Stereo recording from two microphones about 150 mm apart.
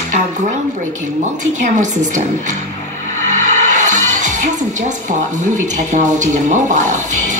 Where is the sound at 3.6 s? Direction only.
55° right (ahead or behind).